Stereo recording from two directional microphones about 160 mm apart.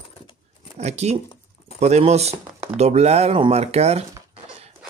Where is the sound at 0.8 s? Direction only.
45° right (ahead or behind).